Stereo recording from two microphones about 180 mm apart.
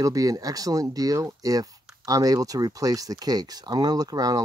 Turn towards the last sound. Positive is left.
turn(degrees=-20)  # may be behind; listen again after turning